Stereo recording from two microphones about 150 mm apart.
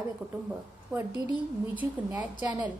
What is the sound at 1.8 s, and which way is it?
Speech, 20° right (ahead or behind).